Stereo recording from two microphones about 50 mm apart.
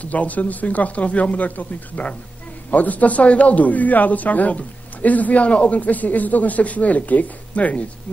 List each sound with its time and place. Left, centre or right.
0.0 s speech: left